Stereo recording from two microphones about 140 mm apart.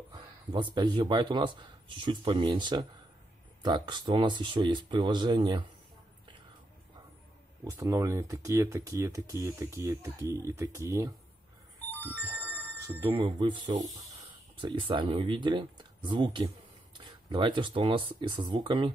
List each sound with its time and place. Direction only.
0.1 s speech: 35° right (ahead or behind)
7.6 s speech: 25° right (ahead or behind)
11.8 s a sound: 15° left (ahead or behind)
12.2 s a sound: 15° right (ahead or behind)
13.1 s speech: 35° right (ahead or behind)
14.6 s speech: 35° right (ahead or behind)